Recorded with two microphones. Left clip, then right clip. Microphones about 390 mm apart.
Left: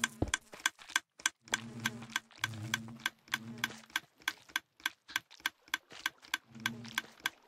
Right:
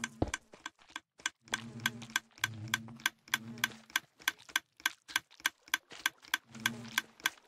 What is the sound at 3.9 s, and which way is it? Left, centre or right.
Typewriter, centre.